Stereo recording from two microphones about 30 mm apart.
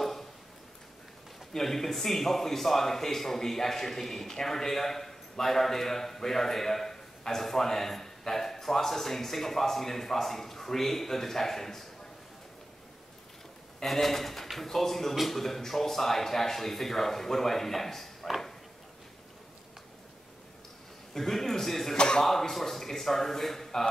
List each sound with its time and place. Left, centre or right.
0.0 s a sound: centre
1.5 s a man's voice: centre
13.8 s a man's voice: centre
21.1 s speech: centre
21.9 s speech: left
22.2 s a man's voice: centre